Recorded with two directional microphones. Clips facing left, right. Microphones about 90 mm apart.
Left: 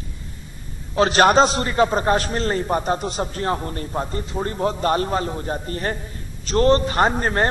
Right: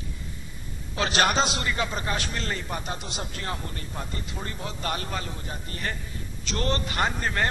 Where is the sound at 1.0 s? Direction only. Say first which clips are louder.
Left 9 dB; 40° left (ahead or behind).